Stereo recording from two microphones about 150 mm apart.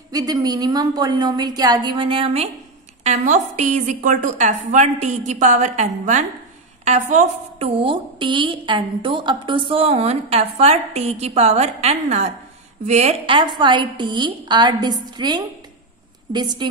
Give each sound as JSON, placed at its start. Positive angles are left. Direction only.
{"t": 0.1, "sound": "a woman's voice", "side_deg": -25}
{"t": 13.6, "sound": "a woman's voice", "side_deg": -30}